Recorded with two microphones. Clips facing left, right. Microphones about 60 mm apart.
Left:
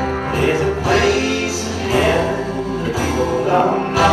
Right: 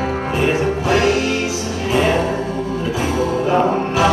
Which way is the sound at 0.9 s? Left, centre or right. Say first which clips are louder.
Even; left.